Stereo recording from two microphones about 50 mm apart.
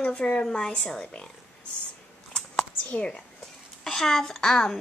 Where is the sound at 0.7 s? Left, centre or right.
Left.